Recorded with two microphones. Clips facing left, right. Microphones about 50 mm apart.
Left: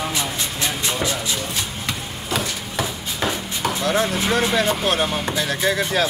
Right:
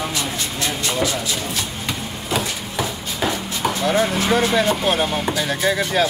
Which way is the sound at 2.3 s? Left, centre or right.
Centre.